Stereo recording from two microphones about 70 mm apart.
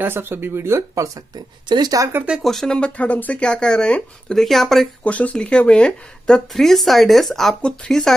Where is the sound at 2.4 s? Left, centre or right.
Centre.